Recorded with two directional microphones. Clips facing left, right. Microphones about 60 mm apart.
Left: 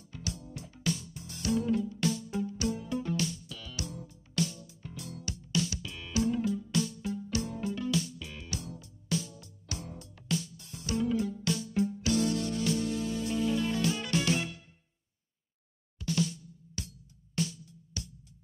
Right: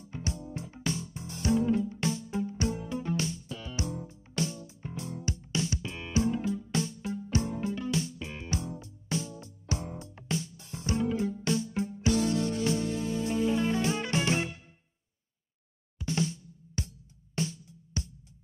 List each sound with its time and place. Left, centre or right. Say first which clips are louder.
0.0 s music: right 4 dB; right
16.0 s drum: even; right
17.4 s music: even; right